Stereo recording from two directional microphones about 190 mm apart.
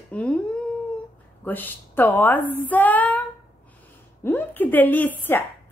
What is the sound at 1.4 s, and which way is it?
A woman's voice, 10° left (ahead or behind).